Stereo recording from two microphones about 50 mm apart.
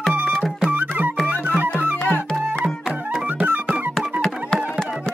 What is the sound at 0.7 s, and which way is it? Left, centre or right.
Music, right.